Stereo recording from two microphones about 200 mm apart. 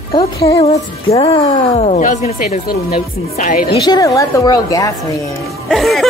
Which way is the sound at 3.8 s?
20° left (ahead or behind).